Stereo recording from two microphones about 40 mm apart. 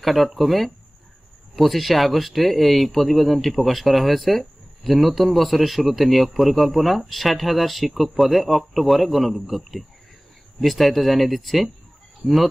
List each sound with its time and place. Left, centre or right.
0.0 s speech: centre
12.2 s speech: left